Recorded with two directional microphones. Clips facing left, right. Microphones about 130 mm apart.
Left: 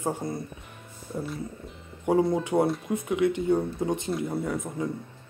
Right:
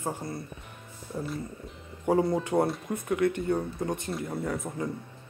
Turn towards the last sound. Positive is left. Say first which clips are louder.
# left 2 dB
turn(degrees=0)  # may be behind; listen again after turning